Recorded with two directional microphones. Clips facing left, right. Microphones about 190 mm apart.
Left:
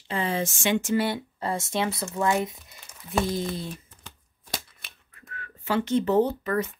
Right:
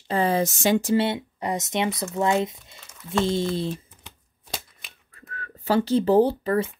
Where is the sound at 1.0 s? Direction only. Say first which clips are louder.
Right 2 dB; 20° right (ahead or behind).